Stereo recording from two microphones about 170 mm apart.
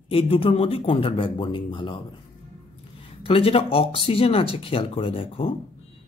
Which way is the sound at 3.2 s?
35° left (ahead or behind).